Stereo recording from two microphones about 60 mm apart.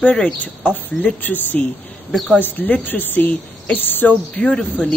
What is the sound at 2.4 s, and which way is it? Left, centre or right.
Speech, left.